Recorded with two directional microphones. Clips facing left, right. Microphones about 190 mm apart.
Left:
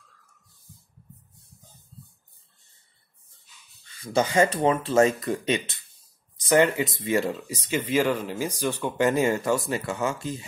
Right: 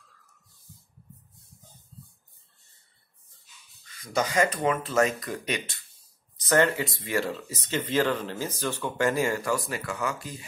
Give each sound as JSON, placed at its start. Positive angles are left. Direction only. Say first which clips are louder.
{"t": 3.8, "sound": "speech", "louder": "left 4 dB", "side_deg": 30}